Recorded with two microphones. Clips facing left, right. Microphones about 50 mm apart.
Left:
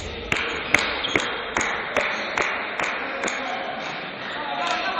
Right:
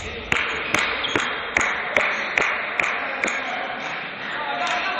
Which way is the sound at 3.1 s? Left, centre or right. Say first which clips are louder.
Right 2 dB; right.